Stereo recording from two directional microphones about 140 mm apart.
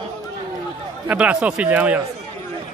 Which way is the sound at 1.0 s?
10° right (ahead or behind).